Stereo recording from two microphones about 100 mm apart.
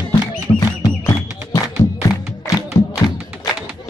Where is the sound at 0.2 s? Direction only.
40° left (ahead or behind).